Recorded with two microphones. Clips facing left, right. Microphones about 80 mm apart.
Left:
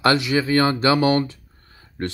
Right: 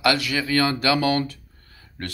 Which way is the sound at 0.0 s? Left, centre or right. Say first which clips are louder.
Left 3 dB; left.